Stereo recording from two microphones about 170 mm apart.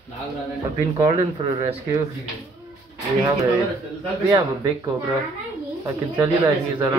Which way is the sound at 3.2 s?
20° right (ahead or behind).